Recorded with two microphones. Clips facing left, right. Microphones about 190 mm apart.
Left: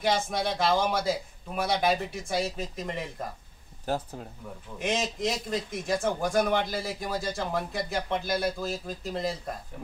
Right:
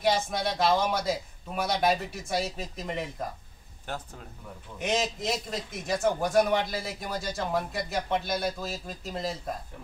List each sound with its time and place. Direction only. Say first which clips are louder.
0.0 s a man's voice: even; centre (ahead or behind)
3.8 s speech: left 7 dB; 35° left (ahead or behind)
4.7 s a man's voice: right 1 dB; centre (ahead or behind)